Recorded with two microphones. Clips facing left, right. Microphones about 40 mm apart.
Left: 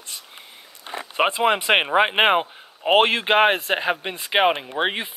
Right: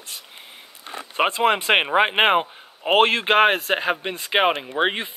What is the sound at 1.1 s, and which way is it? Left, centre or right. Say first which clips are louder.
Speech: even; centre.